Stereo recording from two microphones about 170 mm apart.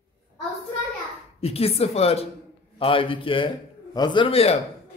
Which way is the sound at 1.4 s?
35° left (ahead or behind).